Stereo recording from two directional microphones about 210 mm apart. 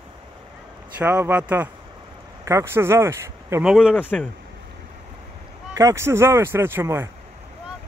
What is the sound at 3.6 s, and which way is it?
Speech, centre (ahead or behind).